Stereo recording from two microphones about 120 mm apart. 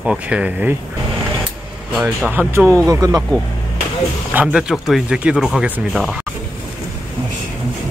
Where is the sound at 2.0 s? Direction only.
10° right (ahead or behind).